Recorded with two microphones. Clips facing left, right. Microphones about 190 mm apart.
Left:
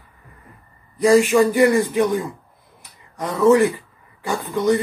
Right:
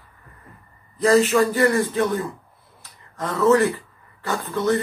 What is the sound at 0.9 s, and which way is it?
A man's voice, 10° left (ahead or behind).